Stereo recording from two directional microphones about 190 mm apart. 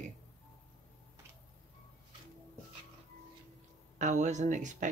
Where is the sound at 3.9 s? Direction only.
40° right (ahead or behind).